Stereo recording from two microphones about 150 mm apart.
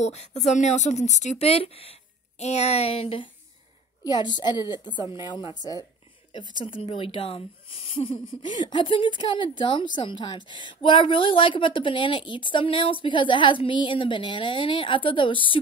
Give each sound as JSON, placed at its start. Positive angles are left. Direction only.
{"t": 0.0, "sound": "speech", "side_deg": 50}
{"t": 4.0, "sound": "a woman's voice", "side_deg": 30}
{"t": 6.6, "sound": "a woman's voice", "side_deg": 35}